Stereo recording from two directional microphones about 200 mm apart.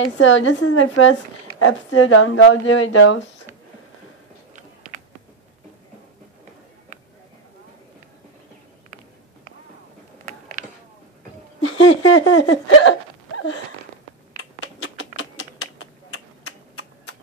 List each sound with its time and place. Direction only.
0.0 s a woman's voice: 70° left (ahead or behind)
11.6 s laughter: 70° left (ahead or behind); by 12.9 s 90° left
14.3 s a sound: 90° left